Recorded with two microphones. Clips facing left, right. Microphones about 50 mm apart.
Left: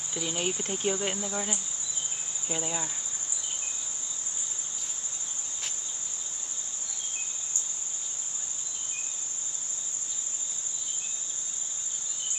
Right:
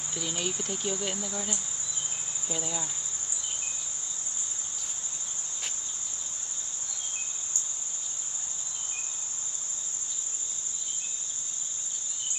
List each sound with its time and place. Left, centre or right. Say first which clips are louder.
0.1 s speech: left 2 dB; left
0.5 s cricket: left 3 dB; left
1.1 s cricket: left 2 dB; centre